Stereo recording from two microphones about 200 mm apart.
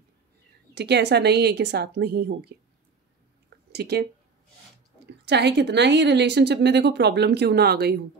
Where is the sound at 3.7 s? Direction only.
55° right (ahead or behind).